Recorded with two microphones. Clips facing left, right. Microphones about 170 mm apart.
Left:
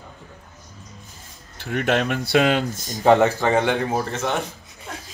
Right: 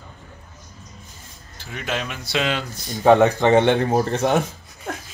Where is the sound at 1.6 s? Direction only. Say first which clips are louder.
Left 7 dB; 60° left (ahead or behind).